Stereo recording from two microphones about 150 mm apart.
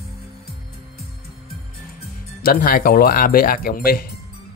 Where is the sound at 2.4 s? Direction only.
75° left (ahead or behind).